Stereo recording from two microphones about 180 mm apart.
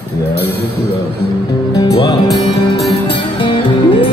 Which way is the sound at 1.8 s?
20° left (ahead or behind).